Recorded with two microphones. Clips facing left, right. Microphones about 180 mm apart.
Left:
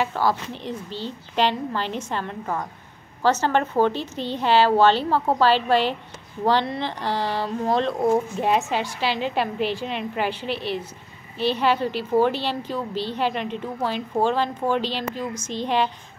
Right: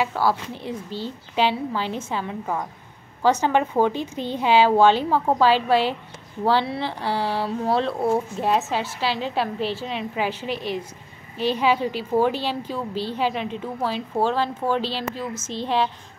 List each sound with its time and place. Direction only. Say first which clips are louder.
0.0 s a woman's voice: even; 10° right (ahead or behind)
10.5 s a woman's voice: even; 45° right (ahead or behind)
11.5 s a woman's voice: right 1 dB; 10° right (ahead or behind)